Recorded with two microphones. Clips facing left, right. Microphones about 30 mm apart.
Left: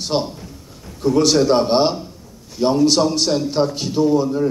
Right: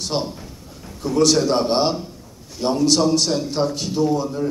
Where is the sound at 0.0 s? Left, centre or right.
Centre.